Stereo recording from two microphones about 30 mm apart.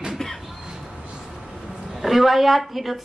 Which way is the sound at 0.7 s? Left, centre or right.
Right.